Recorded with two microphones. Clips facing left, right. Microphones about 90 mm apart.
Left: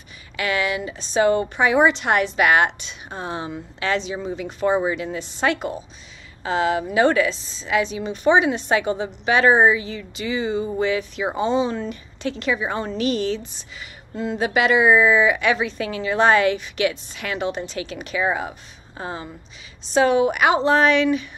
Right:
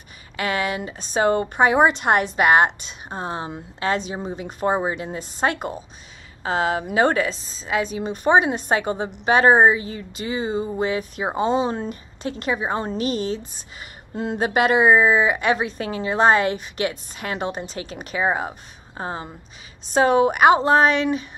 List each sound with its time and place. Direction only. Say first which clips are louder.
0.4 s a woman's voice: left 1 dB; 40° right (ahead or behind)